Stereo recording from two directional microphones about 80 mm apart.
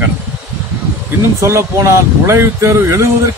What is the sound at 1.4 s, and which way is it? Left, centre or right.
Speech, right.